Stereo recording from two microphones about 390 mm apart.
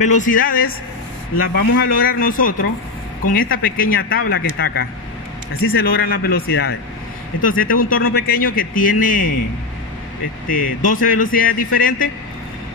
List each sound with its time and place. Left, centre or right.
0.0 s speech: centre
10.9 s speech: left